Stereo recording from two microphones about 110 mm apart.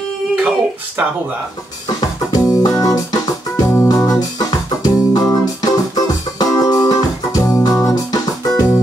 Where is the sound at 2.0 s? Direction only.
35° left (ahead or behind).